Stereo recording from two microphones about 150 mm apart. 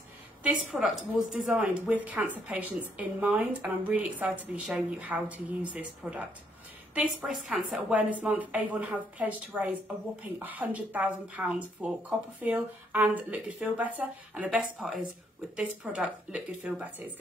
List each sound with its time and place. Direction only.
0.4 s a woman's voice: 10° right (ahead or behind)